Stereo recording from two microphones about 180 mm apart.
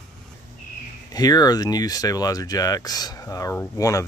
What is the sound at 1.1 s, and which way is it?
Speech, 20° left (ahead or behind).